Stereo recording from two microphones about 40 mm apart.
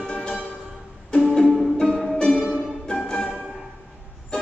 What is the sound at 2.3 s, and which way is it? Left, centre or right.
Music, centre.